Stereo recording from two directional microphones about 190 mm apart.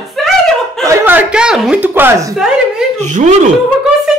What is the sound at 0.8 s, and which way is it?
Speech, 10° right (ahead or behind).